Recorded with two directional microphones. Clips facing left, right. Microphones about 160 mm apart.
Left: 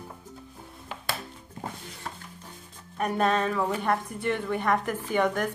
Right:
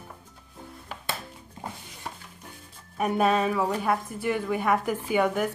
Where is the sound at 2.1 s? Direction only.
10° right (ahead or behind).